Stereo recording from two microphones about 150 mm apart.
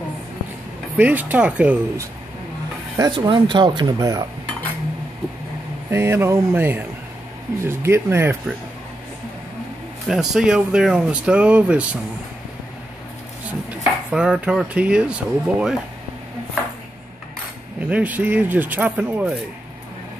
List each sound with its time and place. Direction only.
0.9 s speech: 10° right (ahead or behind)
3.0 s speech: 30° right (ahead or behind)
5.9 s speech: 15° right (ahead or behind)
10.0 s speech: 5° right (ahead or behind)
13.7 s speech: 5° right (ahead or behind)
17.8 s speech: 10° right (ahead or behind)